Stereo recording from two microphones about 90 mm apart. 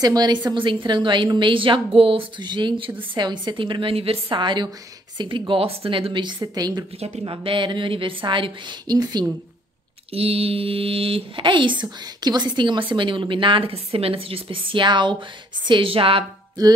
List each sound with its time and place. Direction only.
0.0 s speech: 45° right (ahead or behind)
0.5 s a woman's voice: 65° right (ahead or behind)
5.5 s speech: 90° right
5.9 s speech: 75° right (ahead or behind)
6.4 s speech: 45° right (ahead or behind)
7.2 s speech: 75° right (ahead or behind)
8.8 s speech: 45° right (ahead or behind)
10.1 s speech: 90° right